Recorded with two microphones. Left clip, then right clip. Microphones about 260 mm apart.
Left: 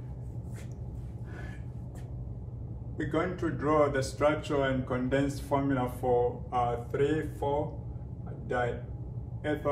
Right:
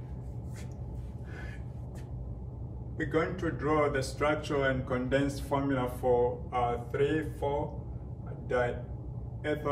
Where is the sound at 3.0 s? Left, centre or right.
Centre.